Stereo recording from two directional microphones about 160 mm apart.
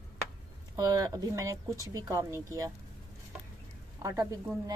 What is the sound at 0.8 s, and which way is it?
A woman's voice, 20° right (ahead or behind).